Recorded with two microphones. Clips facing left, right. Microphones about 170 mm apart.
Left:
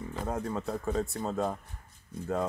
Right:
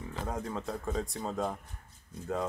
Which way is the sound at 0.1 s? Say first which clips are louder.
Left 3 dB; centre (ahead or behind).